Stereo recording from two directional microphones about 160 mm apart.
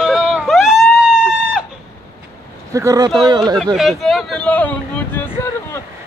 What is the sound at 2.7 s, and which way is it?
Speech, 20° right (ahead or behind).